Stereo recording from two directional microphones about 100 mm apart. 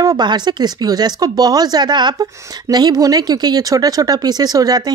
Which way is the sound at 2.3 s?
35° right (ahead or behind).